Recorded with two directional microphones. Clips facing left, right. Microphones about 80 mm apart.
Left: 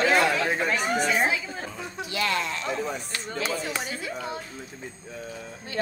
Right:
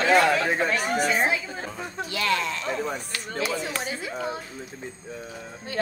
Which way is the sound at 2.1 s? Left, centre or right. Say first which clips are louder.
Right 1 dB; left.